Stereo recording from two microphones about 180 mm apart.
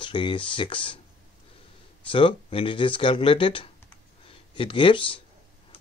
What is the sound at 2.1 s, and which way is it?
Speech, 30° left (ahead or behind).